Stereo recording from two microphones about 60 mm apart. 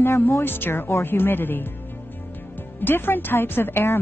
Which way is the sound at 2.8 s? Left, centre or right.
Left.